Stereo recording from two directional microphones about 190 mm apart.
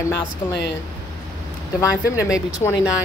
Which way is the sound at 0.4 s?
35° left (ahead or behind).